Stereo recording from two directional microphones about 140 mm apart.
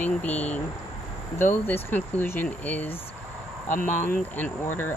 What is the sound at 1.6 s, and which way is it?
Speech, 15° left (ahead or behind).